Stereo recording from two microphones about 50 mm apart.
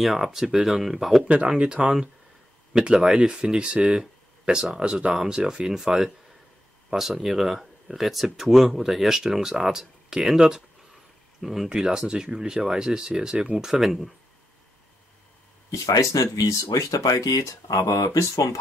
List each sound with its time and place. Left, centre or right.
0.0 s speech: centre
1.5 s speech: centre
11.4 s speech: centre
15.7 s speech: left